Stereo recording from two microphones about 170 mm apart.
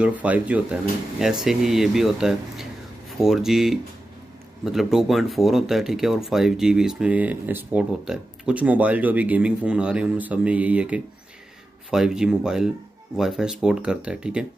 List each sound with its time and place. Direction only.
0.0 s speech: 10° right (ahead or behind)